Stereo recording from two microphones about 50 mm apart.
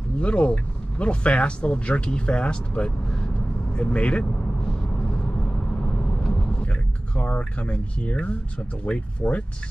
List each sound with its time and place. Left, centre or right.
0.2 s speech: left
5.8 s vehicle: left
7.2 s speech: left